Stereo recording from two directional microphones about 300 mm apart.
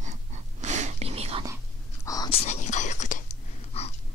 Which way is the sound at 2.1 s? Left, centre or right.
Centre.